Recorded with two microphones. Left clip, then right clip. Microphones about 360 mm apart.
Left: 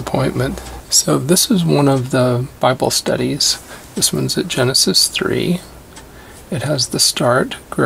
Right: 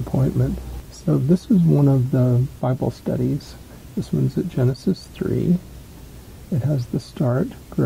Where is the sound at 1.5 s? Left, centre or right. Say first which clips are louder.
Left 5 dB; centre.